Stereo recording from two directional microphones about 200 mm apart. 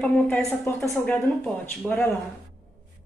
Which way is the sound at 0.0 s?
5° left (ahead or behind).